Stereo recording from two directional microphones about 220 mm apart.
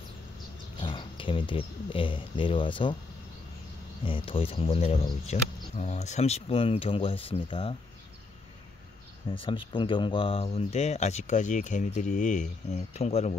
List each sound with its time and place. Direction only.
0.7 s speech: 20° left (ahead or behind)
4.0 s speech: 25° left (ahead or behind)
9.3 s speech: 25° left (ahead or behind)